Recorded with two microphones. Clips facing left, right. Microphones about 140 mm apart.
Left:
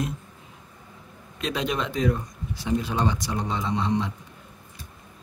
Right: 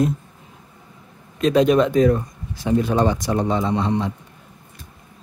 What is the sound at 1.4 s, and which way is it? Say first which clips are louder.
Speech: right 12 dB; 45° right (ahead or behind).